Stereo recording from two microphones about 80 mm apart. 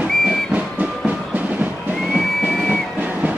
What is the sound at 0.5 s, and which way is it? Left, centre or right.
Music, centre.